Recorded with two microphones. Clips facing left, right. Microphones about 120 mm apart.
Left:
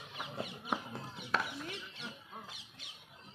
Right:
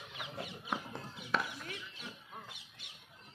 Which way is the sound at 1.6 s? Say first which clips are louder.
Left 2 dB; 25° left (ahead or behind).